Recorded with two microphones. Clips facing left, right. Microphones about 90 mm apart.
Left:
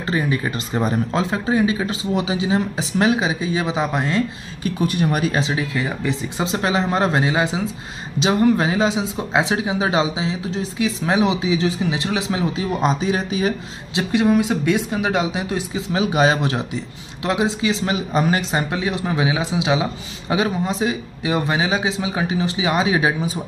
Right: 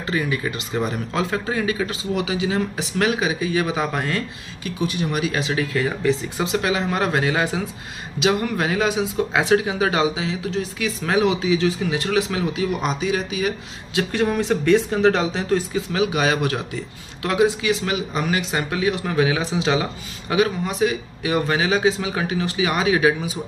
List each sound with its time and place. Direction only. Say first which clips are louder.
0.0 s speech: left 2 dB; 30° left (ahead or behind)
1.2 s speech: left 2 dB; 20° left (ahead or behind)
4.6 s speech: left 4 dB; 45° left (ahead or behind)
5.5 s speech: right 1 dB; 20° left (ahead or behind); by 13.5 s 35° left (ahead or behind)
13.9 s speech: left 4 dB; 15° left (ahead or behind)